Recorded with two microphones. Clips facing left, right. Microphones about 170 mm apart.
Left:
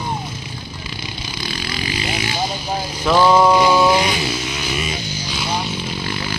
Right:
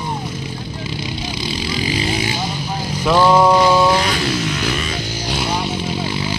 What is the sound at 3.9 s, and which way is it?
Vehicle, 15° left (ahead or behind).